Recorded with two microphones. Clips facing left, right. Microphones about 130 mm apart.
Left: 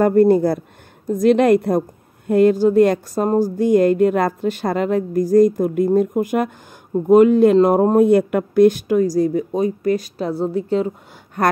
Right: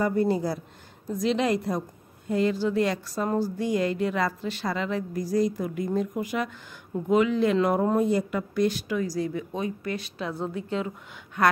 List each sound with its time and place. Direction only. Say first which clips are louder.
0.0 s a woman's voice: left 11 dB; 55° left (ahead or behind)